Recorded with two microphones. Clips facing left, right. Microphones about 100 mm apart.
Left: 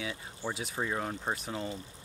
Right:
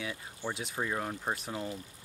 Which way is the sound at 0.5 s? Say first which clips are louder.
Left 1 dB; centre (ahead or behind).